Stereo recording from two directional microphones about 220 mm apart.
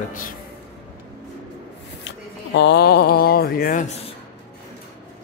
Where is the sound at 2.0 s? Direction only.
50° left (ahead or behind).